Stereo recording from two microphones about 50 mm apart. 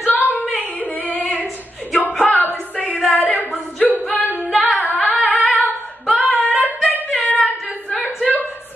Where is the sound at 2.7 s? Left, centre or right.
Left.